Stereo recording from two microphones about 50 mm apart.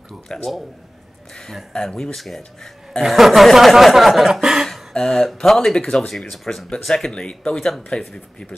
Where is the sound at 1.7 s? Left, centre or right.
Centre.